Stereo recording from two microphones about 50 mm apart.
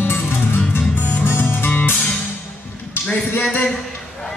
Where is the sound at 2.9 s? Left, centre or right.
Left.